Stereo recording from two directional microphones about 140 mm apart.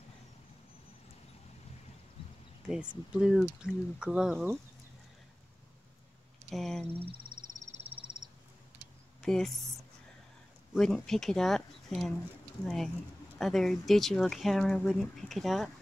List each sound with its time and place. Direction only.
2.7 s speech: 5° right (ahead or behind)
6.5 s a sound: centre (ahead or behind)
7.9 s frog: 40° right (ahead or behind)
9.2 s speech: centre (ahead or behind)